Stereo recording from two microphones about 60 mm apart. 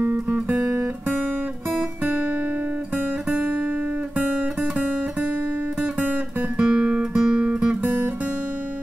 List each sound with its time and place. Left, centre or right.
0.0 s guitar: right
1.7 s music: right
3.3 s guitar: right
5.8 s guitar: right
7.8 s music: right